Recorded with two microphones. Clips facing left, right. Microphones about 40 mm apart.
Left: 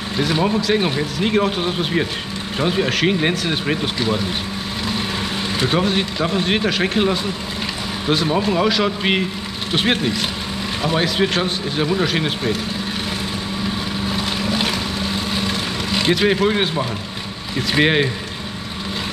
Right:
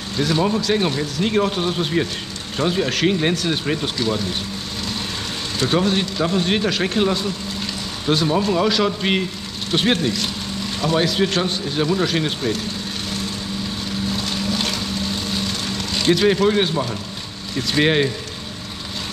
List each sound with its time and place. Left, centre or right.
0.2 s speech: centre
5.6 s speech: centre
14.0 s vehicle: centre
17.6 s speech: centre